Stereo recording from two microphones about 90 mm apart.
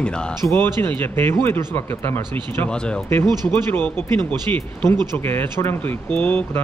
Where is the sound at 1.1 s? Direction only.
25° left (ahead or behind).